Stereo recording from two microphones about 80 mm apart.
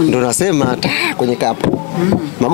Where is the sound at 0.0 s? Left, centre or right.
Centre.